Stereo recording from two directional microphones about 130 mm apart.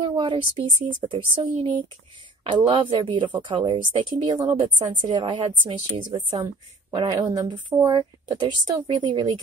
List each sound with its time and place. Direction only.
0.0 s speech: 35° right (ahead or behind)